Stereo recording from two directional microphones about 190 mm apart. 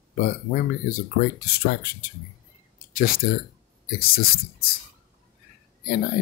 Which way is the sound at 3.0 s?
50° left (ahead or behind).